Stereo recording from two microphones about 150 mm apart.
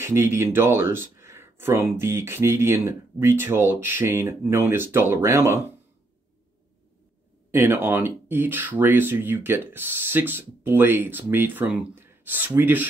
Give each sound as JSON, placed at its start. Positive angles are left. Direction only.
{"t": 0.0, "sound": "speech", "side_deg": -20}
{"t": 7.5, "sound": "speech", "side_deg": -15}